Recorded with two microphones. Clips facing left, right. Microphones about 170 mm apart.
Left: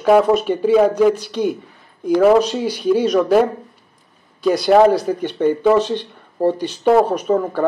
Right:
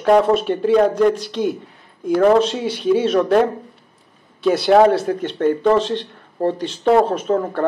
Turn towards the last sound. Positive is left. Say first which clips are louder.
# left 1 dB
turn(degrees=0)  # may be behind; listen again after turning